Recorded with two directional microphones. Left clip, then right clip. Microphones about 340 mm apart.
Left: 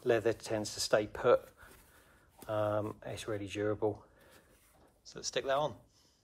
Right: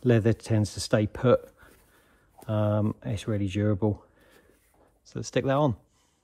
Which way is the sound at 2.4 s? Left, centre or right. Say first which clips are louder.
Right 4 dB; centre.